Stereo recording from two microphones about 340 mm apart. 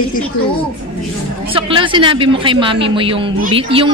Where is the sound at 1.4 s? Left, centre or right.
Centre.